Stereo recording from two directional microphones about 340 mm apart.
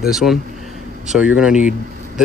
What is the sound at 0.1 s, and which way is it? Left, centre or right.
Speech, centre.